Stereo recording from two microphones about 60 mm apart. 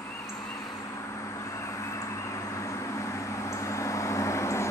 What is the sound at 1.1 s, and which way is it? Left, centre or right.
Vehicle, left.